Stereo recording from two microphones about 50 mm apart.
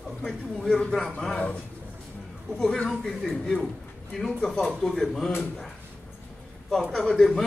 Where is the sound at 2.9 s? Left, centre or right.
Centre.